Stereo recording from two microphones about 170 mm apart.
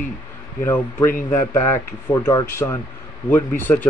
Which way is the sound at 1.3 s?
15° left (ahead or behind).